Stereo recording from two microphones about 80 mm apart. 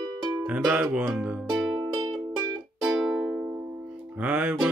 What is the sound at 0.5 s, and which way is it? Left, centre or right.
Speech, centre.